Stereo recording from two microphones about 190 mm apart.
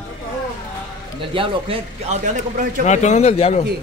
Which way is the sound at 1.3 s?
30° right (ahead or behind).